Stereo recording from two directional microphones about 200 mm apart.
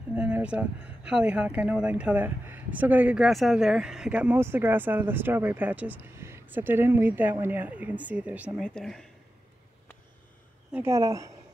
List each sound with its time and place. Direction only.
0.1 s speech: 5° right (ahead or behind)
8.6 s speech: 5° left (ahead or behind)
10.7 s speech: 15° right (ahead or behind)